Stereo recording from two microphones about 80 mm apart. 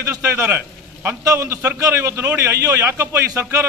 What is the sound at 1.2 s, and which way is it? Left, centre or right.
A man's voice, right.